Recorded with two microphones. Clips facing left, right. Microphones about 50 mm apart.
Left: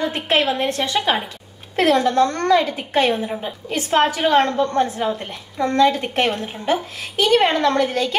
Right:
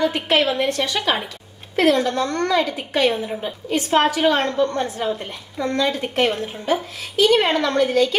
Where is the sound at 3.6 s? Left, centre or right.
Left.